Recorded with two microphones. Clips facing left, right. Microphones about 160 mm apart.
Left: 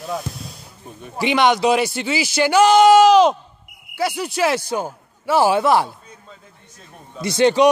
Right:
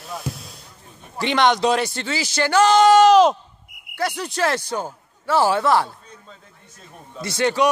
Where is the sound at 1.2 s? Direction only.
5° left (ahead or behind).